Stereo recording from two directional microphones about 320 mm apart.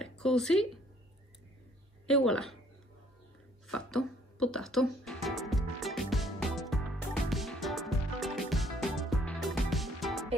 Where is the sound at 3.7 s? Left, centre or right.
Centre.